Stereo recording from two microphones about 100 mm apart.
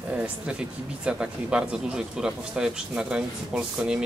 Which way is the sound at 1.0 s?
10° right (ahead or behind).